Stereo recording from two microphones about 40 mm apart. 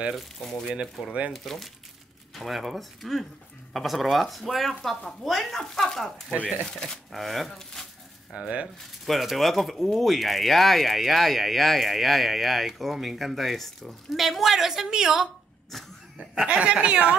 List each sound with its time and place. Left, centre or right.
0.1 s speech: centre
6.4 s speech: left
7.1 s speech: centre
8.3 s speech: right
9.0 s a woman's voice: centre
15.7 s speech: centre
16.4 s speech: right